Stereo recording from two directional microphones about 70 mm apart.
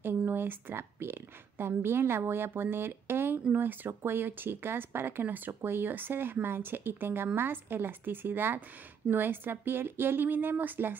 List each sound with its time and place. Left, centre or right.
0.0 s a woman's voice: right